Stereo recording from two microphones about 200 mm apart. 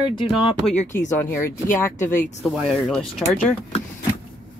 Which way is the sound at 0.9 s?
10° left (ahead or behind).